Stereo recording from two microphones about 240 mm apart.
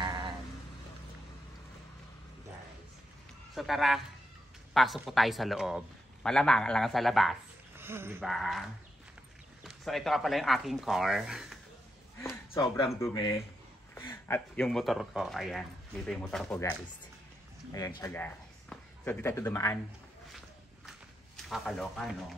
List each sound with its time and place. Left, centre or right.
0.0 s sheep: centre
3.5 s a man's voice: centre
12.2 s a sound: centre
13.0 s speech: centre
17.7 s speech: centre
21.4 s a man's voice: centre